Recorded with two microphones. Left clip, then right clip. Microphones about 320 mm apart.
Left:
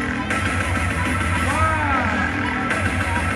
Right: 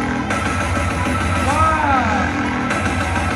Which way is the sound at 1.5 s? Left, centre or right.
Centre.